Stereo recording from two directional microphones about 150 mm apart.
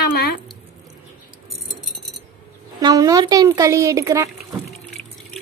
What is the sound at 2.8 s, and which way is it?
A woman's voice, 25° right (ahead or behind).